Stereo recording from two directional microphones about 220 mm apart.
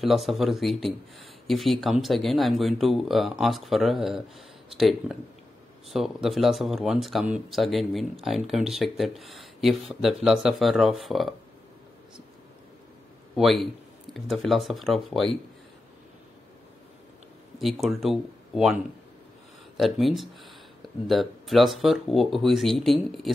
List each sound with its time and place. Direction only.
0.0 s speech: centre (ahead or behind)
13.4 s speech: centre (ahead or behind)
17.8 s speech: centre (ahead or behind)
19.8 s speech: centre (ahead or behind)